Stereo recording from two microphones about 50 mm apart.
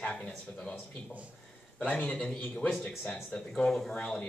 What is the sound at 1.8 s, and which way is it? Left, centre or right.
Speech, left.